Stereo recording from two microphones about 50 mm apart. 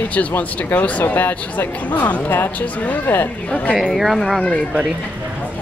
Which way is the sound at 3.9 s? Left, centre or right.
Centre.